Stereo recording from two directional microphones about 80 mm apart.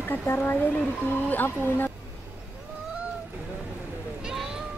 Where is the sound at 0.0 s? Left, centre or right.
Left.